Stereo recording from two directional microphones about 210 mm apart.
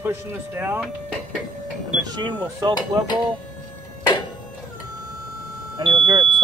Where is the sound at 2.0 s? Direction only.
20° right (ahead or behind).